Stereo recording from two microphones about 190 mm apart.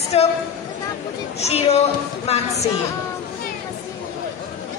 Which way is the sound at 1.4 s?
35° left (ahead or behind).